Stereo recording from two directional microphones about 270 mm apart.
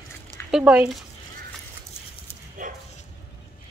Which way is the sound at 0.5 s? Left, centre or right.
Centre.